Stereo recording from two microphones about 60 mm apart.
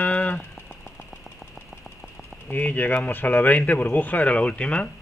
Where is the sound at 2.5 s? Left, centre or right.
Left.